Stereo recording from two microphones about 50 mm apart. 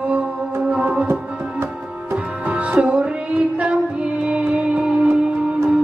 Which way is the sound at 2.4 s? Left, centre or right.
Right.